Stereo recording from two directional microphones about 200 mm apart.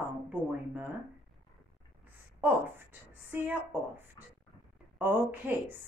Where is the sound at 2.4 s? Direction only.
10° right (ahead or behind).